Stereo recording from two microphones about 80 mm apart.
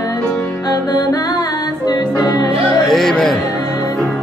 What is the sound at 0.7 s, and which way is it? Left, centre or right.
Music, left.